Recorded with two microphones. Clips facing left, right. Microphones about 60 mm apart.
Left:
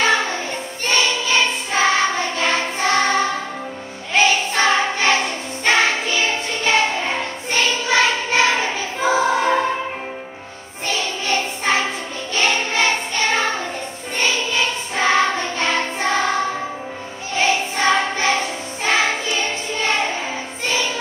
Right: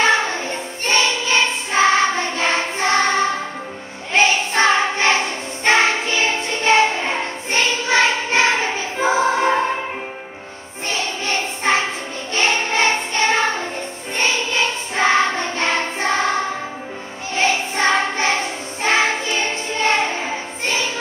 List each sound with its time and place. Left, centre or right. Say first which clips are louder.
0.0 s music: right 1 dB; right
0.8 s singing: right 1 dB; right
4.1 s choir: even; right
10.9 s child singing: left 1 dB; right
12.4 s choir: right 1 dB; right
14.1 s music: right 1 dB; right
17.4 s music: even; right